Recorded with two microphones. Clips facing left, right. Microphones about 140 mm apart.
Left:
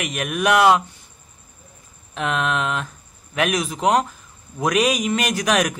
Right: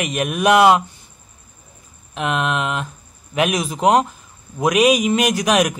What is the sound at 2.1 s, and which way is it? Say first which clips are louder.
A man's voice: right 2 dB; 10° right (ahead or behind).